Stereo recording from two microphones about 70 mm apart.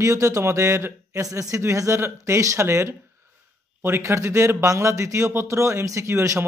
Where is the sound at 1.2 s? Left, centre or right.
Right.